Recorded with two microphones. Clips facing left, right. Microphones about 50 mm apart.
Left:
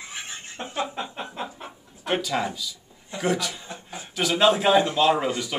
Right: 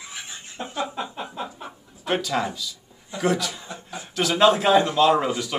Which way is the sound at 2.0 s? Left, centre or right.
Centre.